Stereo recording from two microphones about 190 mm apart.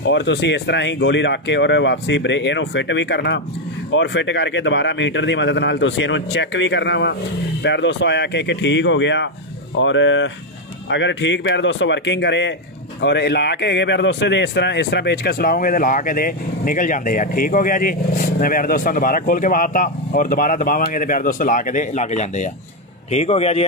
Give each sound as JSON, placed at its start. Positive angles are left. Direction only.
{"t": 0.0, "sound": "speech", "side_deg": 70}
{"t": 9.8, "sound": "speech", "side_deg": 80}